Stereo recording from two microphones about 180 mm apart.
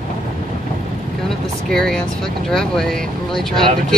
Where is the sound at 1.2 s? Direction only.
5° left (ahead or behind).